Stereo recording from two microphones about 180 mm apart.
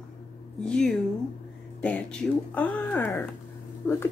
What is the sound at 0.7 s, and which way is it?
Speech, centre (ahead or behind).